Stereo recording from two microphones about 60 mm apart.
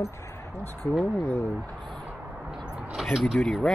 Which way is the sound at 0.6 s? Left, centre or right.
Left.